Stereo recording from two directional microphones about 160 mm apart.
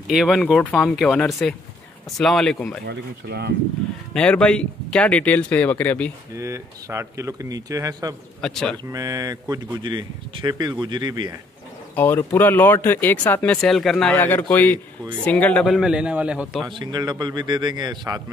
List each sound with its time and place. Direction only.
0.1 s a man's voice: centre (ahead or behind)
2.9 s speech: 90° right
4.1 s speech: 5° left (ahead or behind)
6.3 s speech: 20° right (ahead or behind)
8.4 s a man's voice: 5° left (ahead or behind)
8.9 s speech: 25° right (ahead or behind)
11.9 s a man's voice: 10° left (ahead or behind); by 16.6 s 5° right (ahead or behind)
16.6 s speech: 30° right (ahead or behind)